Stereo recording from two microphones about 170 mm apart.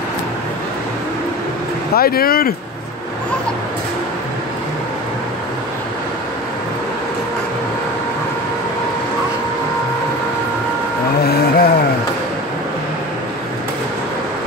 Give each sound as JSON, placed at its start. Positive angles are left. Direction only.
{"t": 2.0, "sound": "speech", "side_deg": 60}
{"t": 11.2, "sound": "vehicle", "side_deg": 65}